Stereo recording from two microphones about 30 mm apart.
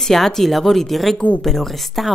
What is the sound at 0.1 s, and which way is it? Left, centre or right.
Speech, centre.